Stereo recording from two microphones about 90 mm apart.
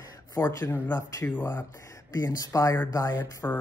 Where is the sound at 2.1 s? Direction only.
40° left (ahead or behind).